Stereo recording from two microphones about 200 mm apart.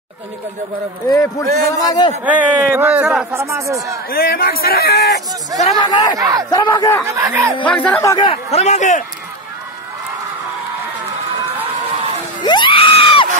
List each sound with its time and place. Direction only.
1.0 s a man's voice: 15° left (ahead or behind)
2.2 s speech: 5° right (ahead or behind)
3.3 s speech: 15° right (ahead or behind)
4.1 s speech: 50° left (ahead or behind)
5.6 s speech: 25° left (ahead or behind)
6.1 s speech: 20° right (ahead or behind)
6.5 s a man's voice: 15° left (ahead or behind)
7.1 s speech: 15° right (ahead or behind)
7.7 s a man's voice: 5° left (ahead or behind)
8.2 s a man's voice: 30° left (ahead or behind)
12.4 s screaming: 25° left (ahead or behind)